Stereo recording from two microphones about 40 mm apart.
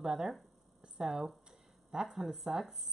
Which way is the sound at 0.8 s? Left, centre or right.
Centre.